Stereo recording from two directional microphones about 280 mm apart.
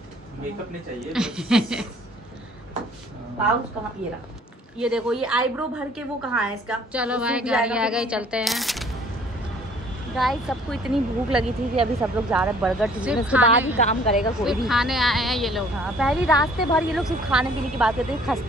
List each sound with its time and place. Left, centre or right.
1.0 s a woman's voice: centre
4.7 s a woman's voice: centre
10.1 s a woman's voice: centre
13.7 s a woman's voice: left
14.3 s a woman's voice: centre